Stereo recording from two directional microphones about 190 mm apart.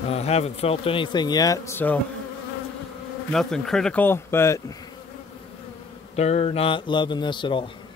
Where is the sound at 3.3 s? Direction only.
Centre (ahead or behind).